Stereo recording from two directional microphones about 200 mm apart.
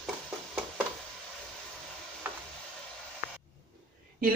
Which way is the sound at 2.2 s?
10° right (ahead or behind).